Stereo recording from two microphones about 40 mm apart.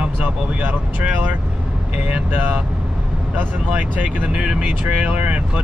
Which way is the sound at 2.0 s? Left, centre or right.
Right.